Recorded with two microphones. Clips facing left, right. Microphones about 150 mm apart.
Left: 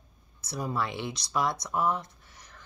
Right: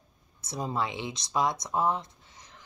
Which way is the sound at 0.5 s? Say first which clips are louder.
Even; 20° right (ahead or behind).